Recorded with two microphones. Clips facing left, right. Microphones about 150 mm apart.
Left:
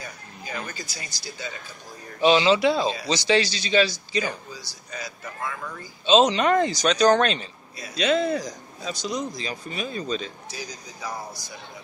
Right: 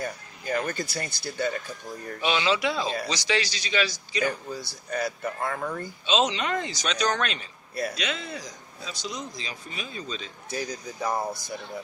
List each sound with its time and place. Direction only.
0.0 s speech: 50° right (ahead or behind)
2.2 s a man's voice: 30° left (ahead or behind)
4.5 s speech: 55° right (ahead or behind)
6.0 s speech: 35° left (ahead or behind)
6.3 s speech: 50° left (ahead or behind); by 8.2 s 30° left (ahead or behind)
8.2 s a man's voice: 45° left (ahead or behind)
10.5 s speech: 55° right (ahead or behind)